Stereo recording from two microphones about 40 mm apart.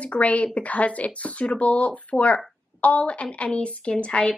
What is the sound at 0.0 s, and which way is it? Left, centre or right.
Speech, left.